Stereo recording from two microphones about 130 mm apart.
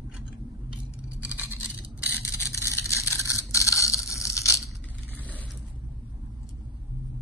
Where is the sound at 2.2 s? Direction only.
25° left (ahead or behind).